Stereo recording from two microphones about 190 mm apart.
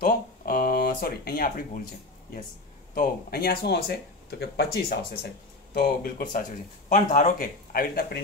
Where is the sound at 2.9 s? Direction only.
50° left (ahead or behind).